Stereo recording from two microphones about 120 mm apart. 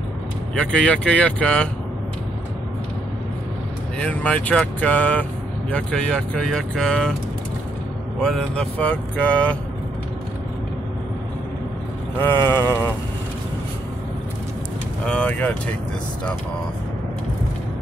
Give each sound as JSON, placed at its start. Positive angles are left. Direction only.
{"t": 0.6, "sound": "speech", "side_deg": 10}
{"t": 4.0, "sound": "speech", "side_deg": 10}
{"t": 8.2, "sound": "speech", "side_deg": 5}
{"t": 12.2, "sound": "mantra", "side_deg": 20}
{"t": 15.0, "sound": "speech", "side_deg": 10}